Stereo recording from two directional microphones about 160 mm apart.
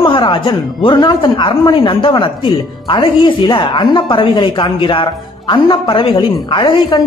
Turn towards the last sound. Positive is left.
turn(degrees=30)  # may be behind; listen again after turning